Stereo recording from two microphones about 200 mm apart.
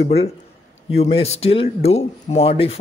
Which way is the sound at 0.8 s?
30° left (ahead or behind).